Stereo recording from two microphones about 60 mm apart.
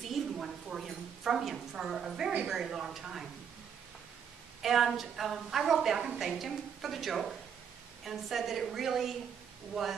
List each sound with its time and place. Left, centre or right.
0.0 s a sound: centre
2.4 s a woman's voice: centre
4.6 s a woman's voice: centre